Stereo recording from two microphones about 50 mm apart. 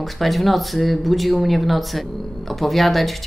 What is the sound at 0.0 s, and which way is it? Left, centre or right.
Speech, centre.